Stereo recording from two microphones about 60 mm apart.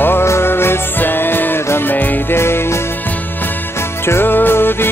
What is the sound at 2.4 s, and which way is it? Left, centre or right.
Music, left.